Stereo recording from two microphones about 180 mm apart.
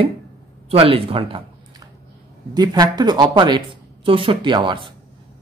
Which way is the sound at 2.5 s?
20° right (ahead or behind).